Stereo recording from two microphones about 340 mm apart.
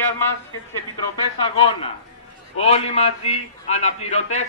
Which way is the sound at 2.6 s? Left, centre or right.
Centre.